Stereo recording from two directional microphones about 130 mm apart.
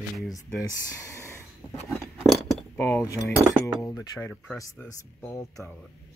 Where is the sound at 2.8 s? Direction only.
15° left (ahead or behind).